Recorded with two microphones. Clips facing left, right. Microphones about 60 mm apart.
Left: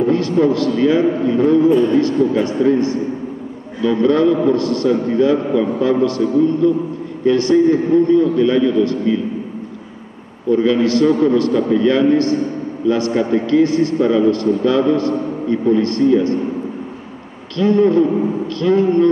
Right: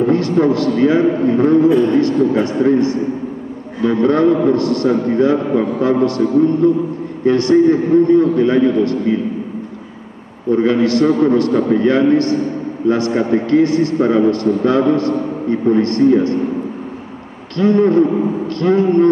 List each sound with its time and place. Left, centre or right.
0.0 s a man's voice: right
3.8 s a man's voice: right
10.5 s a man's voice: right
17.6 s a man's voice: right